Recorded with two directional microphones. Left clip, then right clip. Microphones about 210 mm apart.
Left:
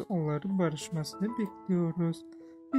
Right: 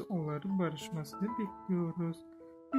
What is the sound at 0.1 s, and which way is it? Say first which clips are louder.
Speech: left 6 dB; 25° left (ahead or behind).